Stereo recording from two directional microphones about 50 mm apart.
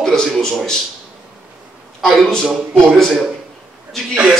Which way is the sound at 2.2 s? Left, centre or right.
Centre.